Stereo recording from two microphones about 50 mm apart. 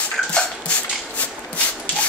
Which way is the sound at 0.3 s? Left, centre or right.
Left.